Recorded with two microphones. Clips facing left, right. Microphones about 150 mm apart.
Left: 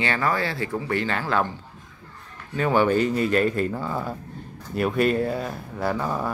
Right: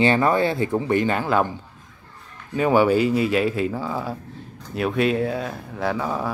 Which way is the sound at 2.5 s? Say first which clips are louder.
Right 3 dB; 10° right (ahead or behind).